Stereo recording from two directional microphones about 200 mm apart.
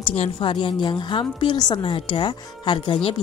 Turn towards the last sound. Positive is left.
turn(degrees=25)  # may be behind; listen again after turning